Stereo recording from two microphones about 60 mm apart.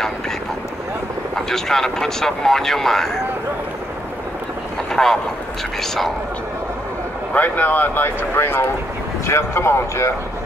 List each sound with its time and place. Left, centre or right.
1.3 s speech: centre
4.9 s speech: centre
7.3 s speech: left